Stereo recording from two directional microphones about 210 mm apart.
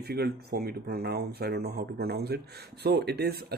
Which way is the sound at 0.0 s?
50° right (ahead or behind).